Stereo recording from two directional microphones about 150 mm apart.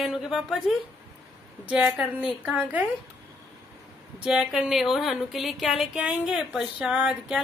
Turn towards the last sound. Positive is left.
turn(degrees=-5)  # may be behind; listen again after turning